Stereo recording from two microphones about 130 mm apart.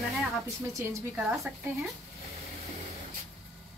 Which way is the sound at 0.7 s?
20° right (ahead or behind).